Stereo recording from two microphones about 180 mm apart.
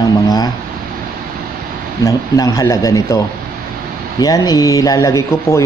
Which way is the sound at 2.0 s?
20° left (ahead or behind).